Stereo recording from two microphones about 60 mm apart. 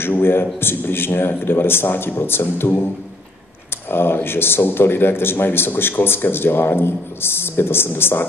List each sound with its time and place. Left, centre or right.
0.0 s speech: left
3.9 s speech: left